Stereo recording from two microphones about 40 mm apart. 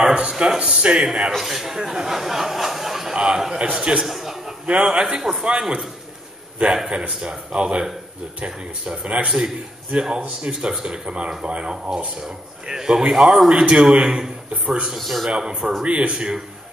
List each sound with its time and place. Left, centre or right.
0.1 s speech: right; by 3.2 s centre
3.2 s speech: centre
4.0 s a sound: centre
4.8 s speech: right
6.9 s speech: right
13.1 s speech: centre
13.5 s speech: right
15.0 s speech: centre
15.2 s speech: centre